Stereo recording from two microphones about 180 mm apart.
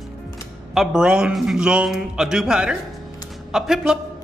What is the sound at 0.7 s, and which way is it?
A man's voice, 5° right (ahead or behind).